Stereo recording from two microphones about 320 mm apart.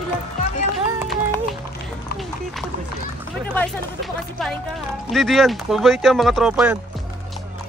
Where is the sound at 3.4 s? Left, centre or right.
Centre.